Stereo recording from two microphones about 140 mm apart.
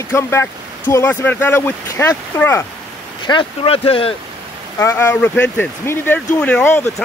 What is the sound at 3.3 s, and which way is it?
Speech, 40° left (ahead or behind).